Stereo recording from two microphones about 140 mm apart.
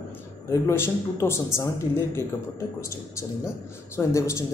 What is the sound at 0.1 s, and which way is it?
Speech, 20° left (ahead or behind).